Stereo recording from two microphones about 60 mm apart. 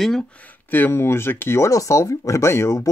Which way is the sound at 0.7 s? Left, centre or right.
Left.